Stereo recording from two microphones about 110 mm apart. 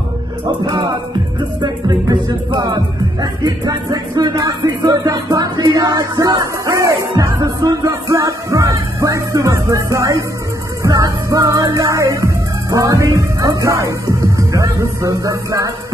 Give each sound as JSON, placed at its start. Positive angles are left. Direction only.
{"t": 0.7, "sound": "music", "side_deg": -40}
{"t": 1.6, "sound": "speech", "side_deg": -40}
{"t": 10.8, "sound": "music", "side_deg": -30}